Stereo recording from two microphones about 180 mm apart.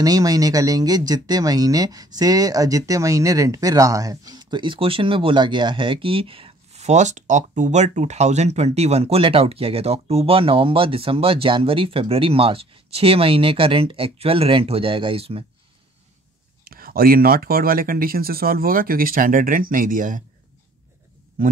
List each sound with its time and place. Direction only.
0.0 s speech: 20° right (ahead or behind)
16.6 s speech: 55° right (ahead or behind)